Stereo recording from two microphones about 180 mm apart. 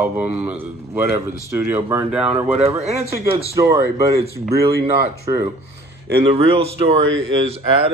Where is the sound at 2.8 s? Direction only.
35° right (ahead or behind).